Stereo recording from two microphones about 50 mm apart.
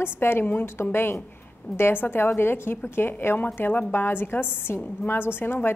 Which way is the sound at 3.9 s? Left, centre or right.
Left.